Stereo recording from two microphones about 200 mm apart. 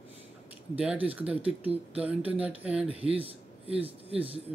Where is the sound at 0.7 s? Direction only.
5° right (ahead or behind).